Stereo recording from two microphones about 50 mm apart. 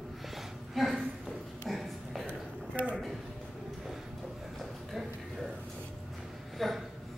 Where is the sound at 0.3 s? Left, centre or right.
Centre.